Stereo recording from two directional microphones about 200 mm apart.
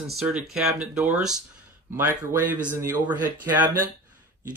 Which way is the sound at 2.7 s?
15° right (ahead or behind).